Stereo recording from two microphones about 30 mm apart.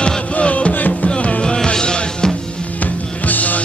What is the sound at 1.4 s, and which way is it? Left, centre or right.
Music, left.